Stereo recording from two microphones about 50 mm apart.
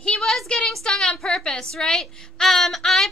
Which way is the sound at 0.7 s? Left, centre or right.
Centre.